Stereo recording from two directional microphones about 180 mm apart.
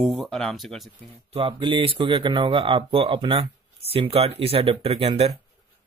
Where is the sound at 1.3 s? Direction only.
30° right (ahead or behind).